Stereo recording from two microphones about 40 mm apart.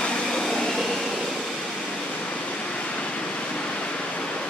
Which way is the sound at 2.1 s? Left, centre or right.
Left.